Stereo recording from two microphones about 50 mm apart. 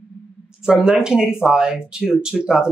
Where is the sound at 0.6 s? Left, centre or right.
Centre.